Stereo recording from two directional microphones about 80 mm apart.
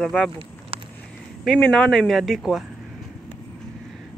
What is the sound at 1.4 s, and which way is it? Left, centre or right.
Speech, centre.